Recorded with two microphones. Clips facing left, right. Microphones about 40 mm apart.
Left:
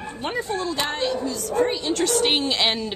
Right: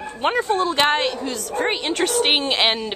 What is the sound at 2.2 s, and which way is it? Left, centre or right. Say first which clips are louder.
Speech: right 2 dB; right.